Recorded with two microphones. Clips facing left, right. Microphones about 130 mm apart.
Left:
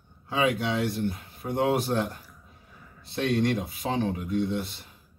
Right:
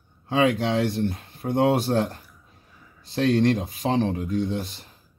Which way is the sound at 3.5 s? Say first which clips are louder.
Right 4 dB; 30° right (ahead or behind).